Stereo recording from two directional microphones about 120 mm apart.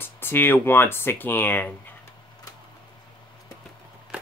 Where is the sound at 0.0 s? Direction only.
15° left (ahead or behind).